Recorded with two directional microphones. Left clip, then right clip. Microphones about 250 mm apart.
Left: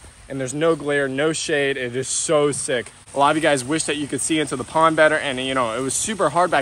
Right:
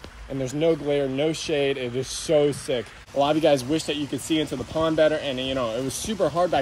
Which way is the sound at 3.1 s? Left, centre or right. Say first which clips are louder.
Left 4 dB; centre.